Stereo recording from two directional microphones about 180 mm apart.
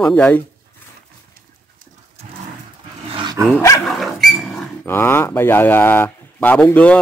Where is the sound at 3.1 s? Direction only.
25° right (ahead or behind).